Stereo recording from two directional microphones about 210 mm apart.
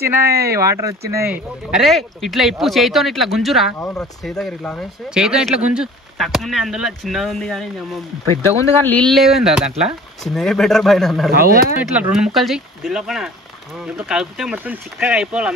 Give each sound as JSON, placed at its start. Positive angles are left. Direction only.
{"t": 0.0, "sound": "speech", "side_deg": -10}
{"t": 8.8, "sound": "speech", "side_deg": 5}
{"t": 11.3, "sound": "speech", "side_deg": -45}
{"t": 11.9, "sound": "speech", "side_deg": -5}